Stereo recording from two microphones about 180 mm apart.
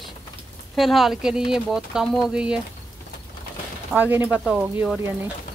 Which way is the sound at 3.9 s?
10° right (ahead or behind).